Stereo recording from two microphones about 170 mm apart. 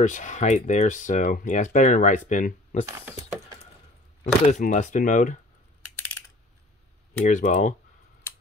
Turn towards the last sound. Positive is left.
turn(degrees=45)  # may be behind; listen again after turning